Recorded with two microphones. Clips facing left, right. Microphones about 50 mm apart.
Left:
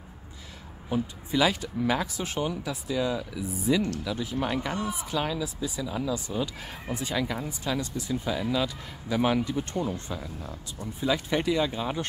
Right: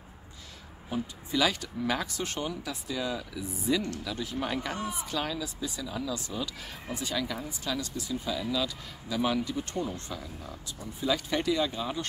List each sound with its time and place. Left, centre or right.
0.8 s speech: centre